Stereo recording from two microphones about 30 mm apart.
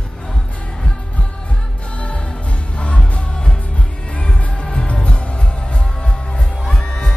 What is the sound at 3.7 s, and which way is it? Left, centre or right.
Music, left.